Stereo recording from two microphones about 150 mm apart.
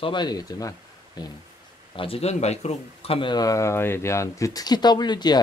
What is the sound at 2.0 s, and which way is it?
Speech, 40° left (ahead or behind).